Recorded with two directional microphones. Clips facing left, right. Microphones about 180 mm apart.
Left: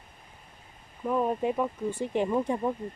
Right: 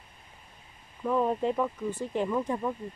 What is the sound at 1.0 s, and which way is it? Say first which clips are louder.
Speech: even; 10° left (ahead or behind).